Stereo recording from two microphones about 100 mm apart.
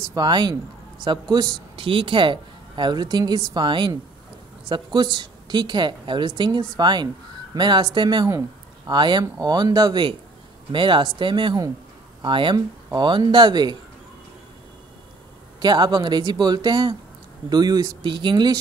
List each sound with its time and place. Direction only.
0.1 s a woman's voice: 45° right (ahead or behind)
1.8 s a woman's voice: 60° right (ahead or behind)
8.3 s a sound: 30° right (ahead or behind)
8.9 s a woman's voice: 50° right (ahead or behind)
15.6 s a woman's voice: 45° right (ahead or behind)
18.0 s a woman's voice: 50° right (ahead or behind)